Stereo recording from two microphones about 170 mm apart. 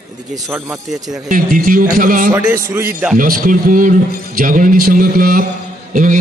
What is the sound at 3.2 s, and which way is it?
Speech, 55° right (ahead or behind).